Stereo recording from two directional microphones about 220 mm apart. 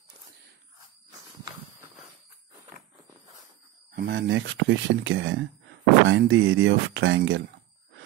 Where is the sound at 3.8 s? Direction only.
50° right (ahead or behind).